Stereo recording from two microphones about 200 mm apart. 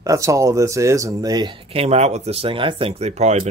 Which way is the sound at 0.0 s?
15° right (ahead or behind).